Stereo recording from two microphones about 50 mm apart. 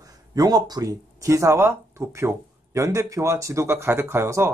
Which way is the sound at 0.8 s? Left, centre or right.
Right.